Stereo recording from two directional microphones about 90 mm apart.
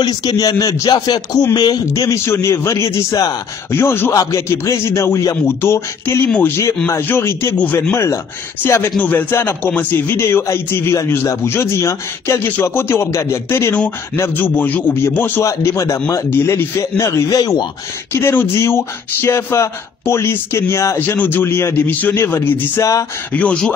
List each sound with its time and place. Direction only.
0.0 s speech: 45° left (ahead or behind)
0.9 s speech: 50° left (ahead or behind)
1.9 s a man's voice: 35° left (ahead or behind)
3.7 s speech: 25° left (ahead or behind)
4.1 s a man's voice: 40° left (ahead or behind)
7.5 s speech: 15° left (ahead or behind)
7.9 s a man's voice: 30° left (ahead or behind)
12.4 s a man's voice: 20° left (ahead or behind)
17.3 s speech: 45° left (ahead or behind)
18.1 s speech: 25° left (ahead or behind)
23.3 s speech: 15° left (ahead or behind)